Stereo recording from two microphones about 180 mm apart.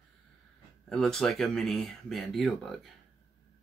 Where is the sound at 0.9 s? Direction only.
Centre (ahead or behind).